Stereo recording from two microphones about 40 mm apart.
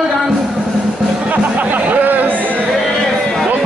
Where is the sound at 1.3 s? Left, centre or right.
Right.